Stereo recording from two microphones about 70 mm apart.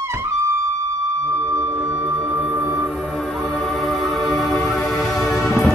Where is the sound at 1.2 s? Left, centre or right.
Right; by 3.2 s centre.